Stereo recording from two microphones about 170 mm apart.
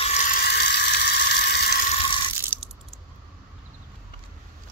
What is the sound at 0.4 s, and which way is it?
Sizzle, 75° left (ahead or behind).